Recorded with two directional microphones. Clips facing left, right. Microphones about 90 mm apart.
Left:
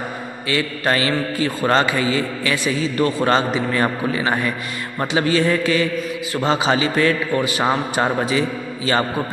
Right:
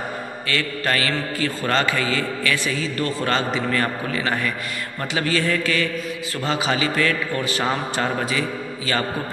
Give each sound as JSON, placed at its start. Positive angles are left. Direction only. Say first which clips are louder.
{"t": 0.5, "sound": "a man's voice", "louder": "left 4 dB", "side_deg": 20}
{"t": 7.4, "sound": "a man's voice", "louder": "left 4 dB", "side_deg": 15}